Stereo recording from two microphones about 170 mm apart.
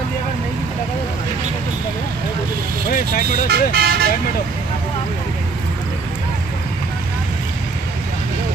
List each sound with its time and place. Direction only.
3.4 s speech: 65° right (ahead or behind)